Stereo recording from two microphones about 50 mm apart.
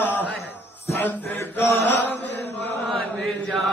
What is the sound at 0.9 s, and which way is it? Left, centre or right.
Mantra, left.